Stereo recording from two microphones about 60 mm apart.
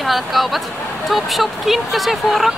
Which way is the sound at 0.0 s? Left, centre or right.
Centre.